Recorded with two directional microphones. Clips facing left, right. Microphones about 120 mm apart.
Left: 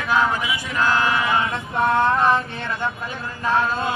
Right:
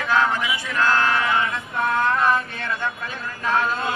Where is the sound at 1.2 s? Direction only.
25° left (ahead or behind).